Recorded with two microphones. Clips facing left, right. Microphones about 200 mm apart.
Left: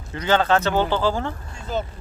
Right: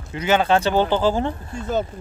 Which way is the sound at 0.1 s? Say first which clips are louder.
Right 1 dB; 10° right (ahead or behind).